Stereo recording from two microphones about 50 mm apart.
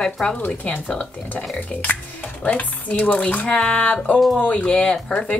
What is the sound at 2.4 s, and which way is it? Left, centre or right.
Speech, left.